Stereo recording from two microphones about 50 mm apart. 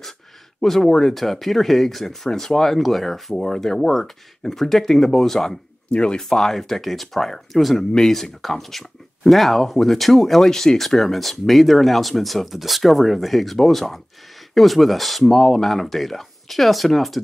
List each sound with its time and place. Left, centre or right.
0.6 s speech: centre
5.9 s speech: centre
6.2 s speech: centre